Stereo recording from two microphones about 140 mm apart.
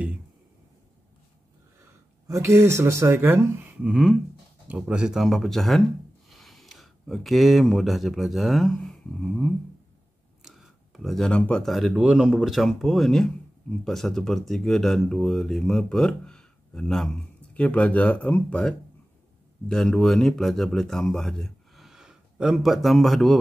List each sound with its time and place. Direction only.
2.2 s speech: 20° right (ahead or behind)
3.8 s speech: centre (ahead or behind)